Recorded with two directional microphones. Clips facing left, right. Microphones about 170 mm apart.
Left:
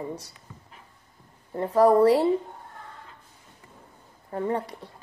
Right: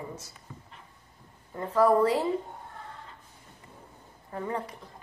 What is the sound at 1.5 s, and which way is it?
Speech, 35° left (ahead or behind).